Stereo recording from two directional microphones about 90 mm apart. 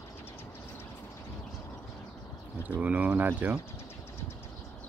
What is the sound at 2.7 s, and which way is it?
Speech, 20° right (ahead or behind).